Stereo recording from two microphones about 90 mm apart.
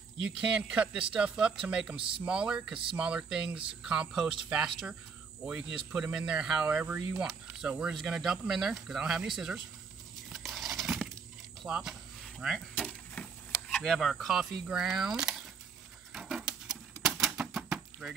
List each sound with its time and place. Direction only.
0.3 s speech: 10° right (ahead or behind)
2.0 s speech: 75° right (ahead or behind)
2.2 s speech: 10° right (ahead or behind)
10.3 s a sound: centre (ahead or behind)
11.6 s cricket: 5° right (ahead or behind)
12.5 s vehicle: 10° left (ahead or behind)
13.8 s speech: centre (ahead or behind)
16.1 s typewriter: centre (ahead or behind)